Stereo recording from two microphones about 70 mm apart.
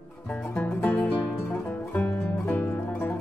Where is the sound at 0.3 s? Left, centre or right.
Left.